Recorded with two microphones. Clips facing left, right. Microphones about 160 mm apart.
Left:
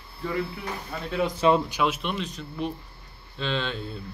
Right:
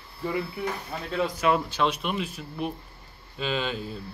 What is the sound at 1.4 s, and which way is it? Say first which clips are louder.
Speech: left 3 dB; 30° left (ahead or behind).